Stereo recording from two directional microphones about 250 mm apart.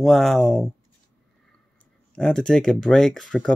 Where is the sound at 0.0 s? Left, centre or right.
Centre.